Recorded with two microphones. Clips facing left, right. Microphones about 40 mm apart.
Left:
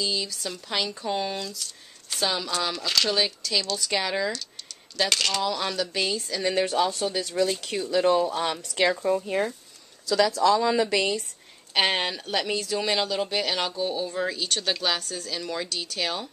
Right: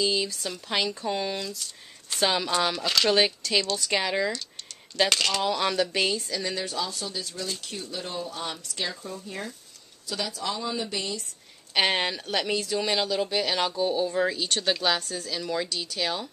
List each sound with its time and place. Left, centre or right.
0.0 s speech: centre
0.8 s speech: centre
2.2 s speech: centre
5.4 s speech: centre
6.5 s speech: left
7.1 s speech: left
7.6 s speech: left
10.0 s speech: left
11.7 s speech: centre